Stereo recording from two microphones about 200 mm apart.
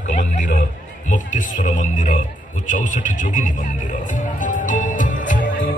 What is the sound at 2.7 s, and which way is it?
Music, 40° left (ahead or behind).